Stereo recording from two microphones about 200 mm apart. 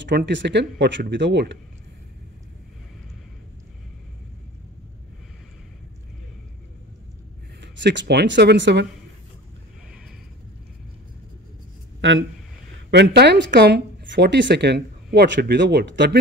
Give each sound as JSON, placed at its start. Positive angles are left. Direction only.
{"t": 0.0, "sound": "speech", "side_deg": -60}
{"t": 7.6, "sound": "speech", "side_deg": -60}
{"t": 12.0, "sound": "speech", "side_deg": -70}
{"t": 12.9, "sound": "speech", "side_deg": -55}